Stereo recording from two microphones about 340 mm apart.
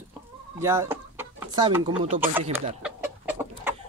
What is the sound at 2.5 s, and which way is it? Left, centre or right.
Chicken, centre.